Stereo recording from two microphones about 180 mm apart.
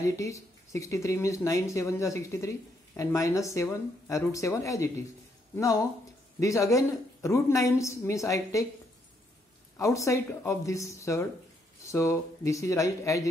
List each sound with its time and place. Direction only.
0.1 s speech: 15° left (ahead or behind)
9.8 s speech: 15° left (ahead or behind)